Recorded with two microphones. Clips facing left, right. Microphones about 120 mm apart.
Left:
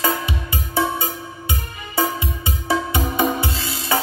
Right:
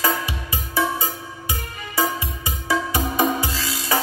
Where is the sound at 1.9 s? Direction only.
25° left (ahead or behind).